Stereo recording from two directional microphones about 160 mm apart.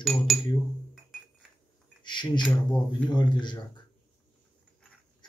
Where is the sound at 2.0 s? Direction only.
30° left (ahead or behind).